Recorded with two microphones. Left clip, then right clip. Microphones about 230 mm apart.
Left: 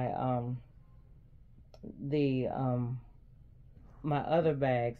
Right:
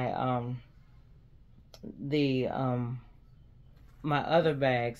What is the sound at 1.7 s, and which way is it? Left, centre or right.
Speech, centre.